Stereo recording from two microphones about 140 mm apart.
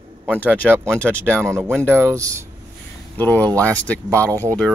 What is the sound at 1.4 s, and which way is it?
Speech, 15° right (ahead or behind).